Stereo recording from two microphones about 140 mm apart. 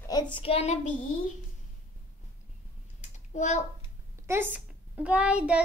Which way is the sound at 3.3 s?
60° left (ahead or behind).